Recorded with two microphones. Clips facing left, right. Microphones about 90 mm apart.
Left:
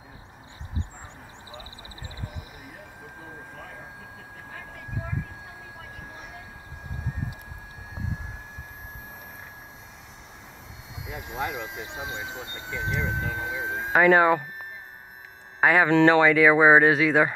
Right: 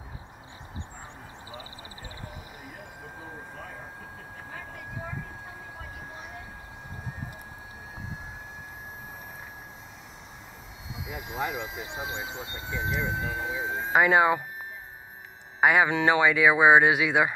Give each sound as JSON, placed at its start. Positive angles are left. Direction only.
{"t": 11.0, "sound": "speech", "side_deg": 0}
{"t": 15.6, "sound": "speech", "side_deg": -10}